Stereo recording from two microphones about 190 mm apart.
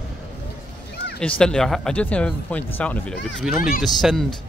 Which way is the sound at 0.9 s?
60° left (ahead or behind).